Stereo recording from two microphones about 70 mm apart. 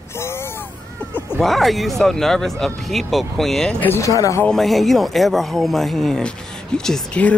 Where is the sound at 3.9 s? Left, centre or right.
Left.